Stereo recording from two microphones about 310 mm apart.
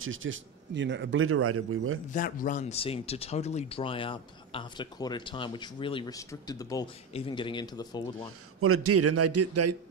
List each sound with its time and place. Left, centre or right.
0.0 s speech: right
2.1 s speech: left
8.5 s a man's voice: right